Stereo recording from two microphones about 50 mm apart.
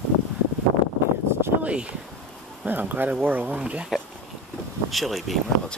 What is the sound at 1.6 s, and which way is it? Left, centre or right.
Speech, right.